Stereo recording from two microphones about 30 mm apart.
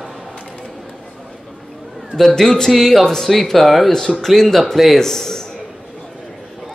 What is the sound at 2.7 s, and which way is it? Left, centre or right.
A man's voice, centre.